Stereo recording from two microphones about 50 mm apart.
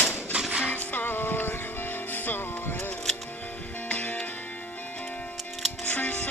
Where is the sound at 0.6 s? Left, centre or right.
Left.